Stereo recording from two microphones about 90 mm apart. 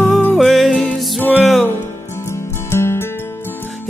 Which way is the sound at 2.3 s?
30° left (ahead or behind).